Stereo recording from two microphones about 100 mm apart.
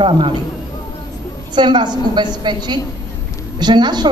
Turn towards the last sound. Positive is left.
turn(degrees=-45)  # may be behind; listen again after turning